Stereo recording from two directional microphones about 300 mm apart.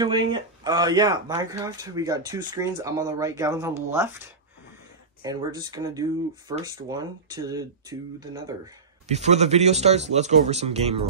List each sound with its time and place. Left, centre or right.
0.0 s speech: centre
5.2 s speech: centre